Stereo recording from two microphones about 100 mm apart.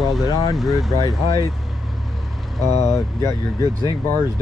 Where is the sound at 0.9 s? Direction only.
35° left (ahead or behind).